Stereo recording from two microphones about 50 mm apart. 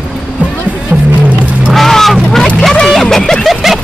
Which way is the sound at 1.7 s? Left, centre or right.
Centre.